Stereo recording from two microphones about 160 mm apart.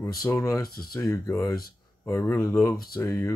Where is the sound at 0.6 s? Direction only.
70° left (ahead or behind).